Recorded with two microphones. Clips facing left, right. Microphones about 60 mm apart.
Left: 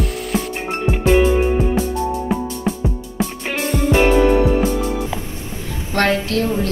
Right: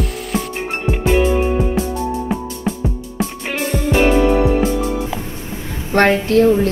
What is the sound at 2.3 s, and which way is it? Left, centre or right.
Music, centre.